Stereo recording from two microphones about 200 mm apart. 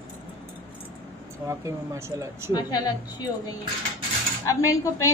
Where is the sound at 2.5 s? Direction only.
20° left (ahead or behind).